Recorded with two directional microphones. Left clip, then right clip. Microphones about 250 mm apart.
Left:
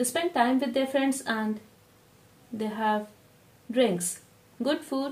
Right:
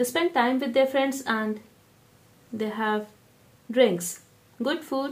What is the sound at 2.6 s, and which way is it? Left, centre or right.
Speech, right.